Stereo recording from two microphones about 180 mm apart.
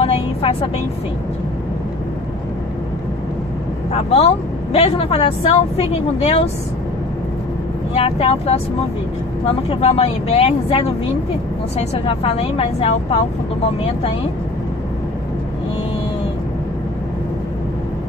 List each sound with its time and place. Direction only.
0.0 s vehicle: 30° left (ahead or behind)
3.9 s speech: 35° left (ahead or behind)
7.9 s speech: 35° left (ahead or behind)
9.7 s speech: 35° left (ahead or behind)